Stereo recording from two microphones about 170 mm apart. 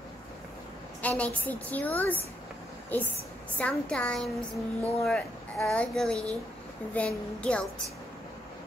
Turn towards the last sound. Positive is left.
turn(degrees=5)  # may be behind; listen again after turning